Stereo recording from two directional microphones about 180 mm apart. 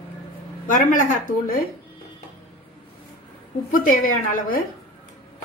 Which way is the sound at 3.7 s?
50° left (ahead or behind).